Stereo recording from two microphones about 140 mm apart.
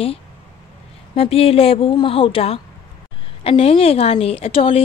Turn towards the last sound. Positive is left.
turn(degrees=40)  # may be behind; listen again after turning